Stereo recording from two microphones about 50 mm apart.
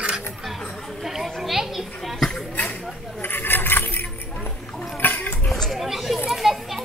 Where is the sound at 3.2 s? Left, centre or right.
Left.